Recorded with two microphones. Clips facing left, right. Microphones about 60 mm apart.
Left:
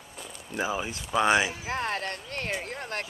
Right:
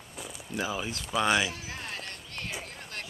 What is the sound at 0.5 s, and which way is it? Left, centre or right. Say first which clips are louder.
Speech: left 3 dB; centre.